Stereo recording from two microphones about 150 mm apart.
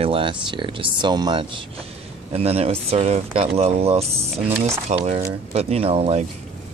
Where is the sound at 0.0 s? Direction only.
35° right (ahead or behind).